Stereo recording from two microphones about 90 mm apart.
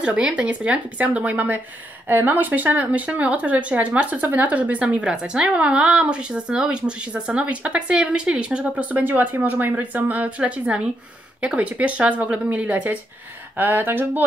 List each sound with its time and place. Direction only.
0.0 s speech: 10° right (ahead or behind)